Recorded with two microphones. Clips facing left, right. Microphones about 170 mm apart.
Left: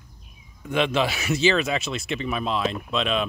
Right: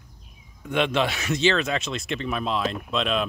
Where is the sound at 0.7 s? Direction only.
Centre (ahead or behind).